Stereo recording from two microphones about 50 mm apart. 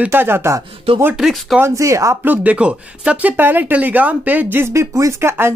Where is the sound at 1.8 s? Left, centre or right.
Right.